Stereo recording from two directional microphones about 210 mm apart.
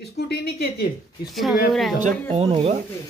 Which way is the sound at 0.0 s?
50° left (ahead or behind).